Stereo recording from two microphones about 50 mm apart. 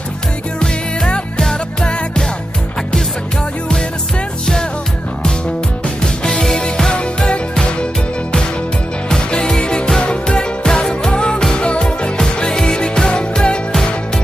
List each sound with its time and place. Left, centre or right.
0.6 s music: centre
6.2 s music: centre
9.1 s music: centre